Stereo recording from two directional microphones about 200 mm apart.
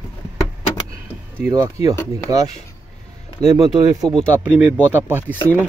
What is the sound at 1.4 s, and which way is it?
Speech, 15° right (ahead or behind).